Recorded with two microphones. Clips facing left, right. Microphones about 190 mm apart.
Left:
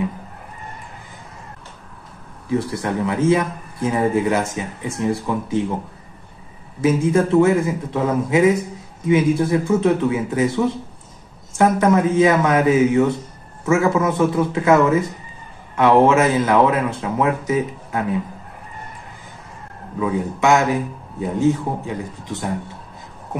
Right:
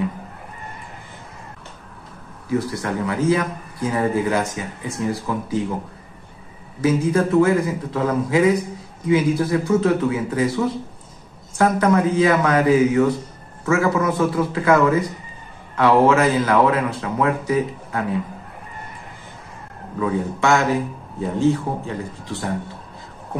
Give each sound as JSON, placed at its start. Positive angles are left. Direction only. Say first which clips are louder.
{"t": 2.4, "sound": "speech", "louder": "left 1 dB", "side_deg": 25}
{"t": 6.8, "sound": "speech", "louder": "left 1 dB", "side_deg": 25}
{"t": 20.0, "sound": "a man's voice", "louder": "left 1 dB", "side_deg": 15}